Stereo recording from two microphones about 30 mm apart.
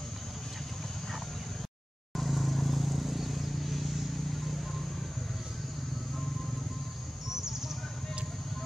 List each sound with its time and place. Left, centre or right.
2.1 s vehicle: centre
7.2 s bird: centre